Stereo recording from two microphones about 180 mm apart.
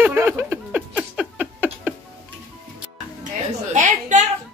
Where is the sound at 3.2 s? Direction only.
45° right (ahead or behind).